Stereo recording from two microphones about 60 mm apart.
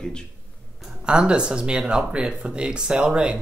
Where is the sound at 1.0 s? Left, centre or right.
Centre.